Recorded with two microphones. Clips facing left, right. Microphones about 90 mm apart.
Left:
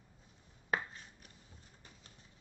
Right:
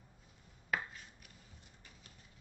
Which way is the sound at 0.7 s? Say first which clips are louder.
Left 2 dB; 35° left (ahead or behind).